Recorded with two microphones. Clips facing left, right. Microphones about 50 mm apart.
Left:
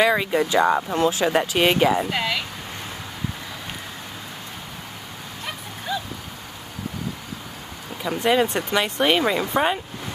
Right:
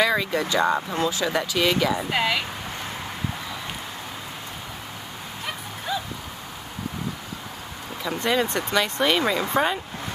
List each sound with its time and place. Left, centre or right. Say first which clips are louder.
0.0 s speech: left 3 dB; left
0.9 s speech: left 4 dB; left
2.0 s a woman's voice: right 1 dB; centre
5.9 s a sound: left 1 dB; centre
8.0 s speech: left 4 dB; centre